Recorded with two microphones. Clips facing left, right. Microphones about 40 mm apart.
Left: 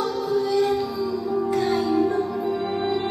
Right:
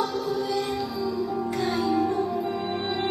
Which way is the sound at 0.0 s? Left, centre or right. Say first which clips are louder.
Left 3 dB; centre.